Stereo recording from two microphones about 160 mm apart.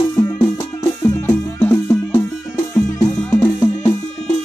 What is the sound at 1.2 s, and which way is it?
Music, 15° left (ahead or behind).